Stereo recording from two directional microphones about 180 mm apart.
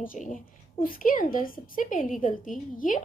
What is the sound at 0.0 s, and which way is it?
Speech, 50° left (ahead or behind).